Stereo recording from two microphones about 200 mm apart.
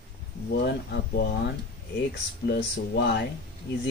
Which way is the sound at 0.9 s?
55° left (ahead or behind).